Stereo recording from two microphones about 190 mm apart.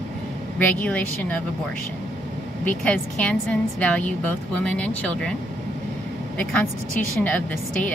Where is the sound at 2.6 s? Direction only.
5° left (ahead or behind).